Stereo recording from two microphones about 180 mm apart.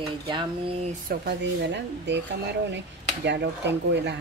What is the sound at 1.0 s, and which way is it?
Speech, 70° right (ahead or behind).